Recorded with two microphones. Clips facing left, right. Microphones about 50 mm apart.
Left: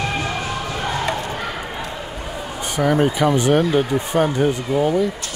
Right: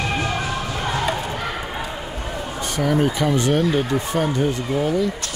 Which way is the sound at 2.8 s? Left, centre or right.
Centre.